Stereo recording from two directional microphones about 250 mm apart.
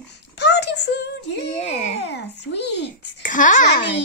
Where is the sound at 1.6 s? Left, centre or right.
Left.